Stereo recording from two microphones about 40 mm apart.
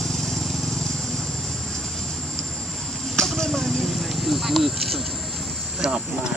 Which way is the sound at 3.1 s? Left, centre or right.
Centre.